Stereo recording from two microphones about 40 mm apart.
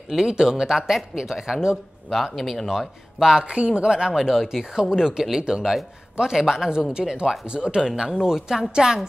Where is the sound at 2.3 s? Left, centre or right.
Centre.